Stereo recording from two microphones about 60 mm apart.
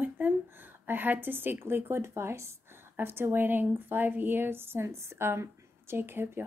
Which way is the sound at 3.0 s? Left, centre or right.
Right.